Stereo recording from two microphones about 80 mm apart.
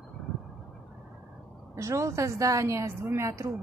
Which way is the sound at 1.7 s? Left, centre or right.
Right.